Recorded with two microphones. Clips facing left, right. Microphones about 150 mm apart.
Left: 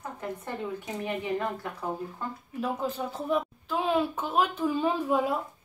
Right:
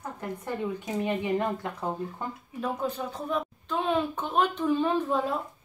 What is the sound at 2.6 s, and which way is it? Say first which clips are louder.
A woman's voice: even; 5° left (ahead or behind).